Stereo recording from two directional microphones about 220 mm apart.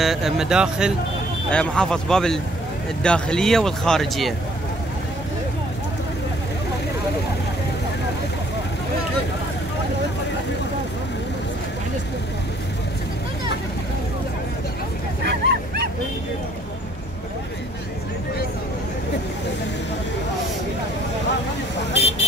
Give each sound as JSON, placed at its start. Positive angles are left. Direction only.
{"t": 0.0, "sound": "speech", "side_deg": 0}
{"t": 15.2, "sound": "dog", "side_deg": -50}
{"t": 21.7, "sound": "vehicle", "side_deg": 50}